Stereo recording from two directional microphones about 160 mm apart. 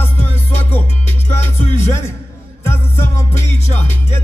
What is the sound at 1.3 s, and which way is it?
Music, 15° left (ahead or behind).